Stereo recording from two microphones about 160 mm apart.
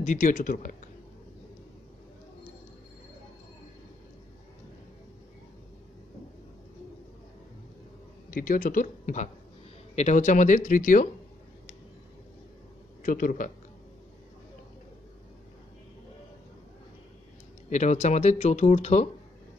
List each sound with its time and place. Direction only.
0.0 s speech: 50° left (ahead or behind)
8.3 s speech: 60° left (ahead or behind)
13.0 s speech: 55° left (ahead or behind)
17.6 s speech: 45° left (ahead or behind)